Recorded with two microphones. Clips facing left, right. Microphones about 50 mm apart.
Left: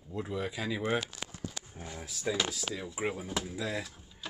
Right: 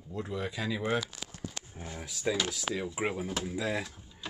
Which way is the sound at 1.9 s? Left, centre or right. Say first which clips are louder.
Right 2 dB; right.